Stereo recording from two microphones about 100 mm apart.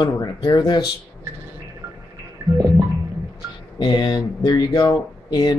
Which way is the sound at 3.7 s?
45° left (ahead or behind).